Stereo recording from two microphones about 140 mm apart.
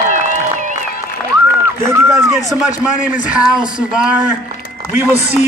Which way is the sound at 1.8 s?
20° right (ahead or behind).